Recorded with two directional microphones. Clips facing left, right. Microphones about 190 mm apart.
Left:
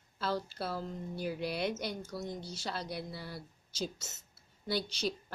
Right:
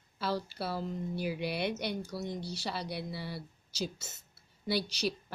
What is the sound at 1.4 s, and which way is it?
Speech, 65° right (ahead or behind).